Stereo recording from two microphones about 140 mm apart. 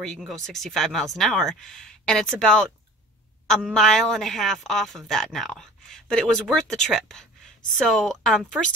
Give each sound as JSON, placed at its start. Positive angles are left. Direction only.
{"t": 0.3, "sound": "a woman's voice", "side_deg": 0}